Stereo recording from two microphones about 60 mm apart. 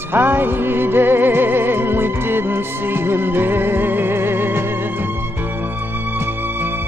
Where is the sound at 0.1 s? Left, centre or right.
Right.